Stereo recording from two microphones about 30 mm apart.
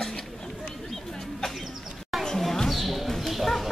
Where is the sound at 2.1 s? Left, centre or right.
Centre.